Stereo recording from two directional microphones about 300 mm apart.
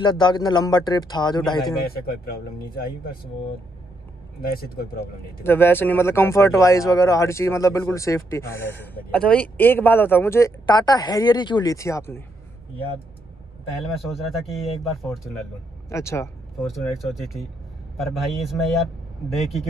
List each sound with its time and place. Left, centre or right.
0.0 s speech: centre
2.2 s speech: left
4.4 s speech: left
5.4 s speech: centre
13.8 s speech: centre